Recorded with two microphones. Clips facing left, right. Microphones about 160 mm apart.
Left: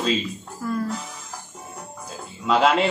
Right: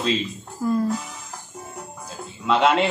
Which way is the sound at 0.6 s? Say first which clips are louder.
Right 5 dB; 20° right (ahead or behind).